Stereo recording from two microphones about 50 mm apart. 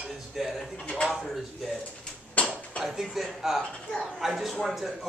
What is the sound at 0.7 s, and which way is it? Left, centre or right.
Speech, left.